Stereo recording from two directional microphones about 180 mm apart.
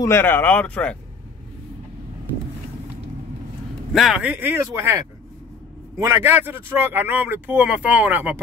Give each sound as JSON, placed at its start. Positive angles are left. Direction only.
{"t": 0.0, "sound": "speech", "side_deg": 15}
{"t": 3.9, "sound": "speech", "side_deg": 0}